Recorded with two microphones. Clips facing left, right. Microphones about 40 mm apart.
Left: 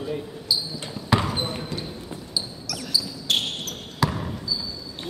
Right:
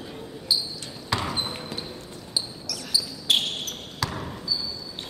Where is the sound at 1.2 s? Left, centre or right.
Centre.